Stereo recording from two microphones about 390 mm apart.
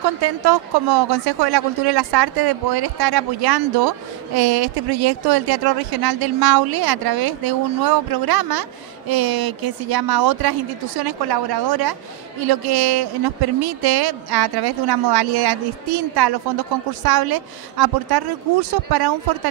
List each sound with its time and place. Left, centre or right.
0.0 s speech: right